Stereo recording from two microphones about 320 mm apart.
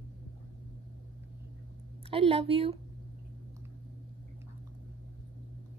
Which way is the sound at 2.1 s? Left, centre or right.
Centre.